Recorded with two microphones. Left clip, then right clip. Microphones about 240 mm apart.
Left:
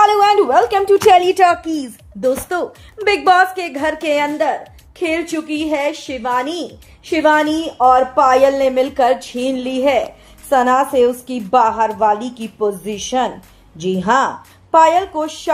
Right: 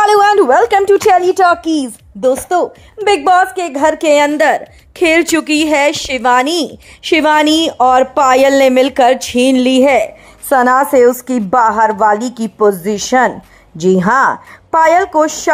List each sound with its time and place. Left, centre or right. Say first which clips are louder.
0.0 s a sound: right 3 dB; right
1.1 s speech: right 1 dB; centre
1.5 s a woman's voice: right 5 dB; right
2.2 s a woman's voice: right 6 dB; centre
4.4 s a woman's voice: right 6 dB; right